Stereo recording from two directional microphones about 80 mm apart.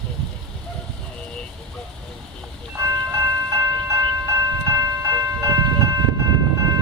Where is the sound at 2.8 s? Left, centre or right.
Right.